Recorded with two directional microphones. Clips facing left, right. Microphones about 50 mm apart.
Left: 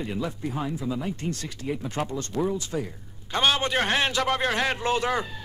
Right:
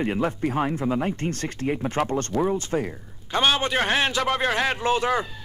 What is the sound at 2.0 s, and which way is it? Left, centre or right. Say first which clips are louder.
Speech: right 7 dB; right.